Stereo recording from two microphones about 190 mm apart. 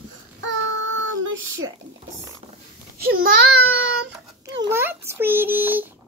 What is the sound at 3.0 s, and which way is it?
Speech, 50° right (ahead or behind).